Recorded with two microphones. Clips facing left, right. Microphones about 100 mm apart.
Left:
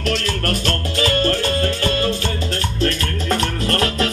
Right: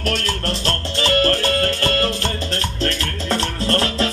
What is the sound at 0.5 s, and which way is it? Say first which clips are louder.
Music: left 3 dB; 35° right (ahead or behind).